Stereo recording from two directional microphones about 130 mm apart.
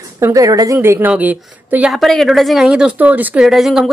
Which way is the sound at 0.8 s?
15° right (ahead or behind).